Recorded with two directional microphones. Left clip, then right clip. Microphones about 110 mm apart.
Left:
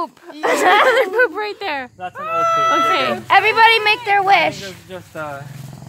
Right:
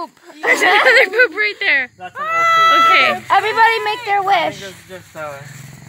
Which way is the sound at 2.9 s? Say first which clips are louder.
Right 3 dB; 30° left (ahead or behind).